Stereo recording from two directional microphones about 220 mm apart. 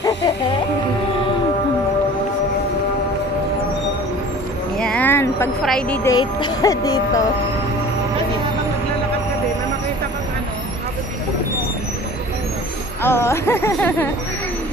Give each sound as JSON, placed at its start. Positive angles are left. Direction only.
{"t": 4.7, "sound": "a sound", "side_deg": 5}
{"t": 5.6, "sound": "a woman's voice", "side_deg": 5}
{"t": 6.1, "sound": "speech", "side_deg": 15}
{"t": 13.0, "sound": "speech", "side_deg": 10}